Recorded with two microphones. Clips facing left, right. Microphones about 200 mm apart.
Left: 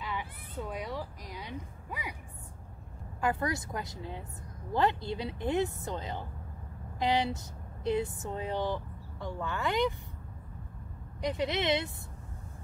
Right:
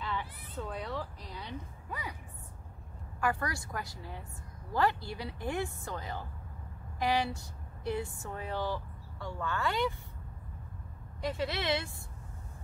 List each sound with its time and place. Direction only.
0.0 s a sound: 10° left (ahead or behind)
3.2 s a woman's voice: 20° left (ahead or behind)
11.1 s a woman's voice: 20° left (ahead or behind)